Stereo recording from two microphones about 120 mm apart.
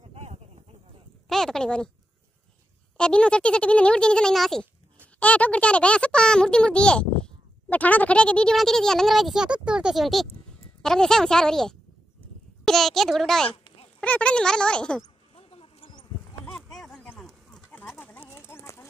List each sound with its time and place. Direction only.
0.1 s a sound: 65° right (ahead or behind)
1.3 s speech: 5° left (ahead or behind)
3.0 s a child's voice: 10° left (ahead or behind)
15.3 s mouse: 50° left (ahead or behind)
16.5 s a sound: 5° left (ahead or behind)
17.9 s horse: 15° left (ahead or behind)